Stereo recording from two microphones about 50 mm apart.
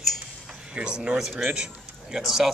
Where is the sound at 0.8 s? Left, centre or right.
Centre.